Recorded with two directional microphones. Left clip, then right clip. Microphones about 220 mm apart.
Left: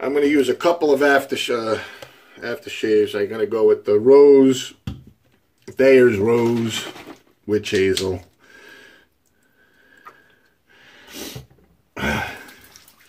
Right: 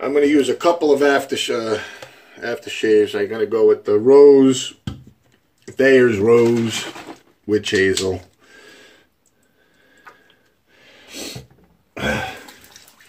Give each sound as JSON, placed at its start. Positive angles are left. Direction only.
{"t": 0.0, "sound": "speech", "side_deg": 20}
{"t": 11.1, "sound": "cat", "side_deg": 25}
{"t": 11.9, "sound": "throat clearing", "side_deg": 25}